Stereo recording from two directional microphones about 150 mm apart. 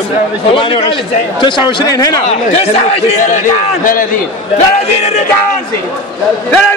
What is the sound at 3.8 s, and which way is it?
Speech, 65° left (ahead or behind).